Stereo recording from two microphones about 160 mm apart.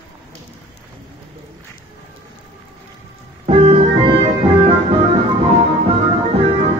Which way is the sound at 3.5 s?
35° right (ahead or behind).